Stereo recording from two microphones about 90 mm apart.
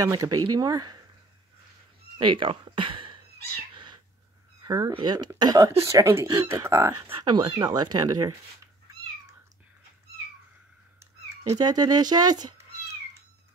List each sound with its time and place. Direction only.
0.0 s speech: 45° right (ahead or behind)
2.1 s speech: 70° right (ahead or behind)
3.7 s cat: 60° right (ahead or behind)
4.6 s a sound: 45° right (ahead or behind)
5.0 s speech: 50° right (ahead or behind)
5.9 s speech: 35° right (ahead or behind)
7.2 s speech: 55° right (ahead or behind)
11.5 s speech: 50° right (ahead or behind)